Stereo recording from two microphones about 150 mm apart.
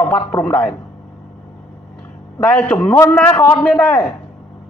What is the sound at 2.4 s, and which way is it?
Speech, 10° left (ahead or behind).